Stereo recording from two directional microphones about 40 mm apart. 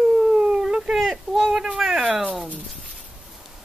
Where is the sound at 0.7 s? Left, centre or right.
Centre.